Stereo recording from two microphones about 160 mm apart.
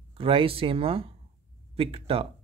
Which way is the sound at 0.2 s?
35° right (ahead or behind).